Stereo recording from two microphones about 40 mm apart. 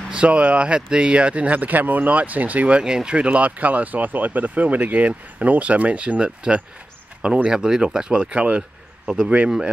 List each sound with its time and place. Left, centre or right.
0.1 s speech: right
2.8 s speech: centre
9.0 s speech: centre